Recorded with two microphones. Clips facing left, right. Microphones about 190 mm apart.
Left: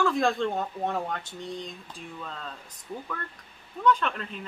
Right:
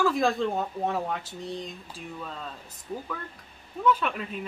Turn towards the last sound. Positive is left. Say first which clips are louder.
# even
turn(degrees=-5)  # may be behind; listen again after turning